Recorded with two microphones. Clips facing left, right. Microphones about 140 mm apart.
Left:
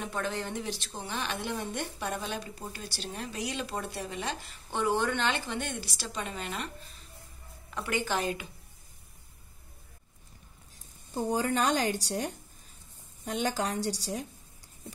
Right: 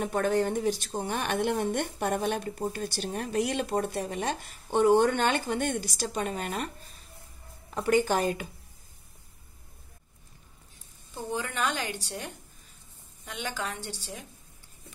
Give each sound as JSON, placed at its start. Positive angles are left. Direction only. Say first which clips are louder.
{"t": 0.0, "sound": "speech", "louder": "right 8 dB", "side_deg": -50}
{"t": 7.7, "sound": "speech", "louder": "right 7 dB", "side_deg": -40}
{"t": 11.1, "sound": "a woman's voice", "louder": "left 4 dB", "side_deg": 40}